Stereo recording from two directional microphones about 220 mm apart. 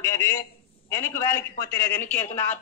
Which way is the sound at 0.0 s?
10° left (ahead or behind).